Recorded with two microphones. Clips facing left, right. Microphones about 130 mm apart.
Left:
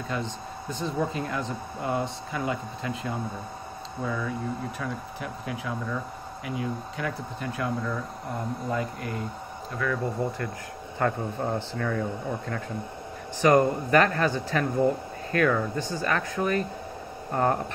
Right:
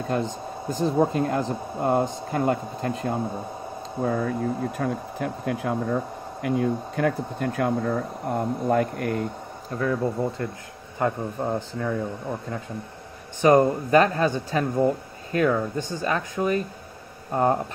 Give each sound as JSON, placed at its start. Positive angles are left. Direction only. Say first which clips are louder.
{"t": 0.1, "sound": "speech", "louder": "right 6 dB", "side_deg": -40}
{"t": 9.8, "sound": "speech", "louder": "right 4 dB", "side_deg": -35}
{"t": 11.0, "sound": "speech", "louder": "right 2 dB", "side_deg": -15}